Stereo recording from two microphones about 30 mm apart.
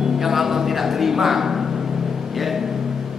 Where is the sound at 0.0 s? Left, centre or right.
Centre.